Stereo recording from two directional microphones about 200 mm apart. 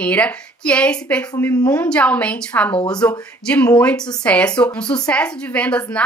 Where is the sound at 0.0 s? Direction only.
5° left (ahead or behind).